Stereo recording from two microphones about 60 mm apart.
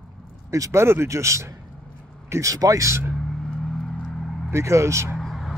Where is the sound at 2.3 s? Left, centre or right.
Right.